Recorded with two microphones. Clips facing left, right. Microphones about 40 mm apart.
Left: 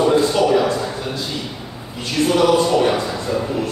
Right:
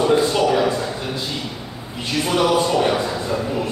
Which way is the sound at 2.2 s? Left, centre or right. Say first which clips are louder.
Left 3 dB; centre.